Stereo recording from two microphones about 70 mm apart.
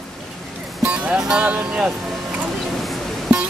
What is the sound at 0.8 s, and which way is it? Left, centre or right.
Speech, centre.